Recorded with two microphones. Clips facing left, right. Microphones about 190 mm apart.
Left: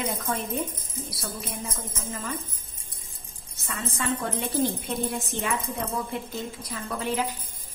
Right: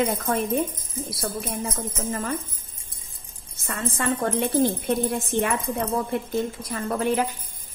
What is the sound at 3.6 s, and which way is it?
A woman's voice, 55° right (ahead or behind).